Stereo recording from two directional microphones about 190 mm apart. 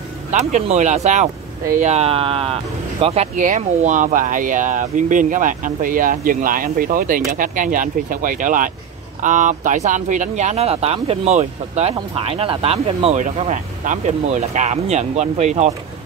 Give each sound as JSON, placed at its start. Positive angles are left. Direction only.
{"t": 0.3, "sound": "speech", "side_deg": -35}